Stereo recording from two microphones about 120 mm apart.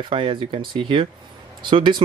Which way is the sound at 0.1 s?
45° right (ahead or behind).